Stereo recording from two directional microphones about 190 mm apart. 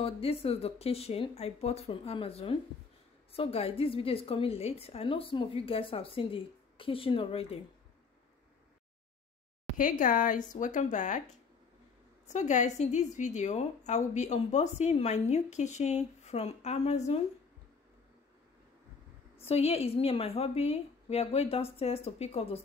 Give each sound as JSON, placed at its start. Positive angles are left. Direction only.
{"t": 0.0, "sound": "a woman's voice", "side_deg": 30}
{"t": 9.8, "sound": "speech", "side_deg": 45}
{"t": 12.3, "sound": "a woman's voice", "side_deg": 40}
{"t": 19.3, "sound": "a woman's voice", "side_deg": 30}